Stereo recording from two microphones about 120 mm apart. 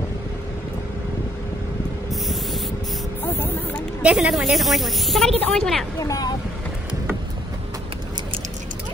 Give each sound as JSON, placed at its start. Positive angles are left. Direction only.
{"t": 2.0, "sound": "a sound", "side_deg": 0}
{"t": 4.0, "sound": "speech", "side_deg": -5}
{"t": 5.9, "sound": "speech", "side_deg": 30}